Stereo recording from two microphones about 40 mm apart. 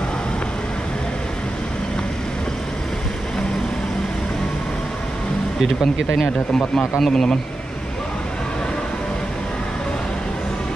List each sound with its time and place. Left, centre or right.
6.2 s speech: left